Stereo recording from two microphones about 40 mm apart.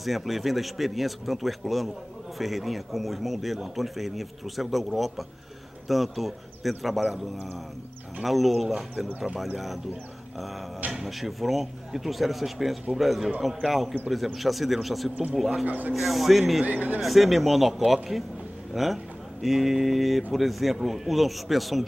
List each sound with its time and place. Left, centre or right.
0.0 s speech: centre
8.2 s speech: centre
10.9 s speech: centre
15.6 s speech: right
15.9 s speech: centre
16.6 s speech: right
17.0 s speech: centre